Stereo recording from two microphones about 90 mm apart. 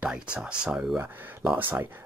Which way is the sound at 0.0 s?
10° right (ahead or behind).